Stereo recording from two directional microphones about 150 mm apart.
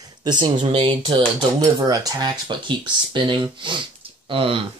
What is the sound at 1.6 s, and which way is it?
Speech, 25° right (ahead or behind).